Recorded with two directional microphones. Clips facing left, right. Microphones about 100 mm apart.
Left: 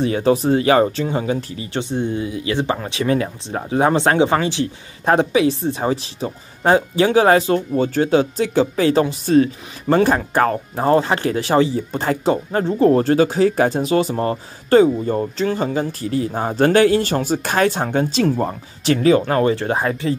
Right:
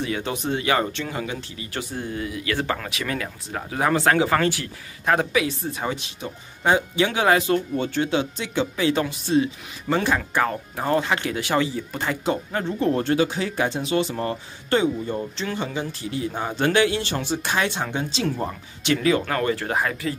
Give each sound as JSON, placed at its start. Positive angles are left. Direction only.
{"t": 0.0, "sound": "speech", "side_deg": 35}